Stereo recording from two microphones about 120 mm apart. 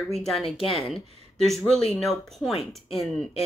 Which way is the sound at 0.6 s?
50° left (ahead or behind).